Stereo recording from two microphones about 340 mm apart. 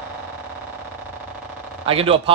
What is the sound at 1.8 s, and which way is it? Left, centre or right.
Speech, centre.